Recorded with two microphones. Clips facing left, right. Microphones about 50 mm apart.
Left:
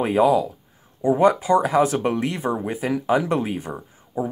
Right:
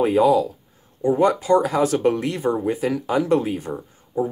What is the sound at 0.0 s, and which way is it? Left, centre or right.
Speech, centre.